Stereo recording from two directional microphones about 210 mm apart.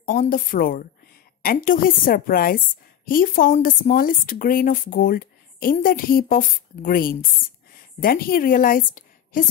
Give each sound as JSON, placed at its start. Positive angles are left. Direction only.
{"t": 0.0, "sound": "a woman's voice", "side_deg": 40}